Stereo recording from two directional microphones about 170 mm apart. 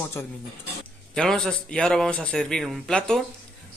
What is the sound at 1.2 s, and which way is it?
Speech, 5° left (ahead or behind).